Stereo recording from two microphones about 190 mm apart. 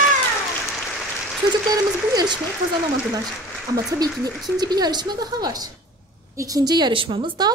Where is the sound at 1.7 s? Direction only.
20° right (ahead or behind).